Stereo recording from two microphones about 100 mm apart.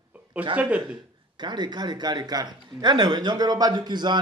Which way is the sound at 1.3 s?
45° right (ahead or behind).